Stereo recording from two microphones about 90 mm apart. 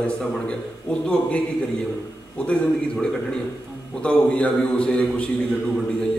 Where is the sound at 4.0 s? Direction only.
10° left (ahead or behind).